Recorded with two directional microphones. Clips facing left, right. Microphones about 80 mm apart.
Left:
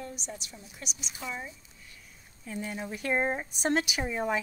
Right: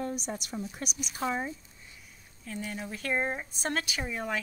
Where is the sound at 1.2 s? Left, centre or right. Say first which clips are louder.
Right 7 dB; right.